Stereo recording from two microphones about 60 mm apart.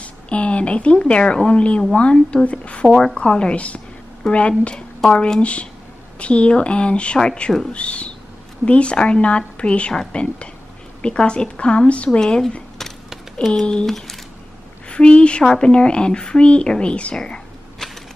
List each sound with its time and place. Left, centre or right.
0.0 s a woman's voice: centre
2.9 s a woman's voice: centre
13.6 s speech: centre
14.9 s speech: centre